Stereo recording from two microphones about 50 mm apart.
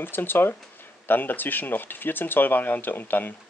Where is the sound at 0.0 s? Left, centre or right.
Left.